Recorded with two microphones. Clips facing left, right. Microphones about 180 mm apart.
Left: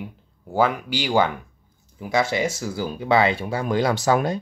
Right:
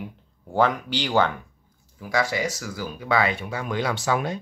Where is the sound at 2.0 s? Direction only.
25° left (ahead or behind); by 4.4 s 40° left (ahead or behind).